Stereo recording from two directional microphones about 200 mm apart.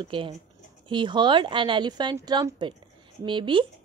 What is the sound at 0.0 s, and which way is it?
Speech, 25° right (ahead or behind).